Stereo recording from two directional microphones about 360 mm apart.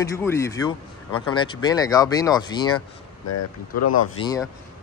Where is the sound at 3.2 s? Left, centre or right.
Left.